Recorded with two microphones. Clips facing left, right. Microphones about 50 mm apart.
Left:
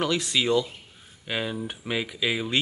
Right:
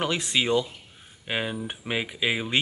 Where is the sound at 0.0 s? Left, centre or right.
Right.